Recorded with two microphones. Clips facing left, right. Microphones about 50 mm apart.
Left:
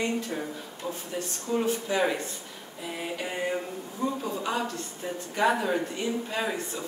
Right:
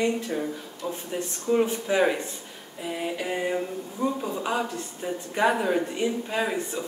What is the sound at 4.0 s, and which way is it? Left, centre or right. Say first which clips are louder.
Speech: right 2 dB; centre.